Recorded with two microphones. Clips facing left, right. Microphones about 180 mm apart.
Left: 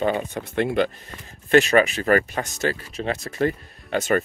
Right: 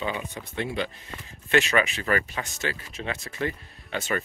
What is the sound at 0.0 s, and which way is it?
Speech, 50° left (ahead or behind).